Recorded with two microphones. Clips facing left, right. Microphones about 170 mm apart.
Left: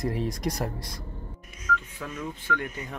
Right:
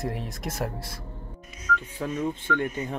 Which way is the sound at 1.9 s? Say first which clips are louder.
Right 7 dB; 30° right (ahead or behind).